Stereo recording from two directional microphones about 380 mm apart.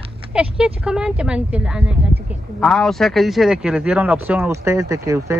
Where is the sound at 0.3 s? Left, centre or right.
Centre.